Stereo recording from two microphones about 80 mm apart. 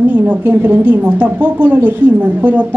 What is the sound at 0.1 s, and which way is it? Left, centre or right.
A woman's voice, right.